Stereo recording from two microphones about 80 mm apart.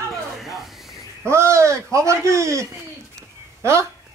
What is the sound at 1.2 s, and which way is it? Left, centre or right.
Speech, right.